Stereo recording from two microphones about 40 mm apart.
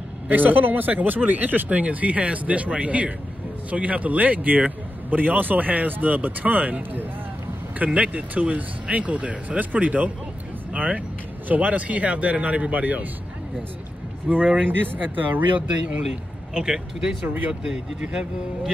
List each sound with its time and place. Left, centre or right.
0.3 s speech: right
7.8 s speech: right
14.3 s speech: right
14.9 s speech: right
16.5 s speech: centre